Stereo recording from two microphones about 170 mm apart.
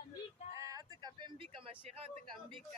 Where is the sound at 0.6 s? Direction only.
20° right (ahead or behind).